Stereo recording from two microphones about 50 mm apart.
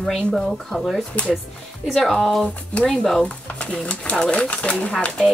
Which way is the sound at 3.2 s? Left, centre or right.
Left.